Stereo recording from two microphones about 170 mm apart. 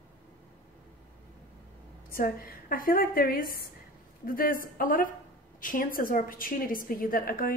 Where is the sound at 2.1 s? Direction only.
60° left (ahead or behind).